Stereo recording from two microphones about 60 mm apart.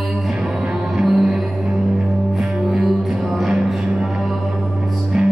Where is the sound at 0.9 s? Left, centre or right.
Centre.